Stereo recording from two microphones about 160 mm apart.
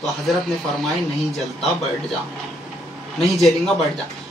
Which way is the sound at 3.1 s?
Centre (ahead or behind).